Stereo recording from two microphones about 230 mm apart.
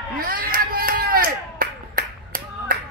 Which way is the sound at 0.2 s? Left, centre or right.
Right.